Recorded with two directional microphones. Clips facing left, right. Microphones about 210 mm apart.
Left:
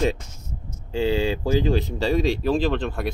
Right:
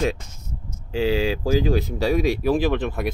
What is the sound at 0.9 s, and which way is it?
Speech, 5° right (ahead or behind).